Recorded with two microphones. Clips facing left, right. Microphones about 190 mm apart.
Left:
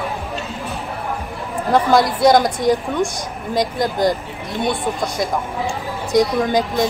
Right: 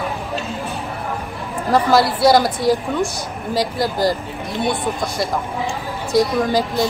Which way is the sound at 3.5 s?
5° right (ahead or behind).